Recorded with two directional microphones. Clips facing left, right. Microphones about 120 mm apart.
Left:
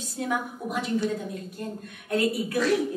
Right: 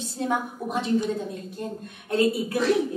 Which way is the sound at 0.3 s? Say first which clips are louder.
Right 1 dB; 25° right (ahead or behind).